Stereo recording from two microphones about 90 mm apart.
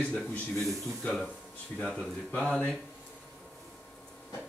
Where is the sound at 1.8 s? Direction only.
5° left (ahead or behind).